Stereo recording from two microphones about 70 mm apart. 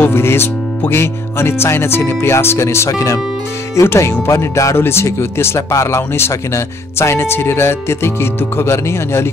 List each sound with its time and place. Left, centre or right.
0.0 s speech: left